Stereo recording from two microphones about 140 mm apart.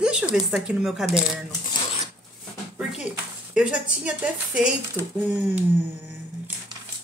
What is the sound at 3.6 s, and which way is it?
A woman's voice, 5° right (ahead or behind).